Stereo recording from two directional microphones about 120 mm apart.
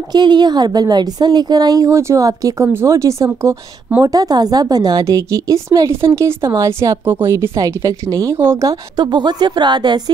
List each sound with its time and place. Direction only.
0.1 s a woman's voice: 35° right (ahead or behind)